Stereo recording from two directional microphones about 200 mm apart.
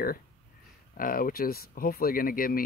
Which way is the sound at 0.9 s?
45° left (ahead or behind).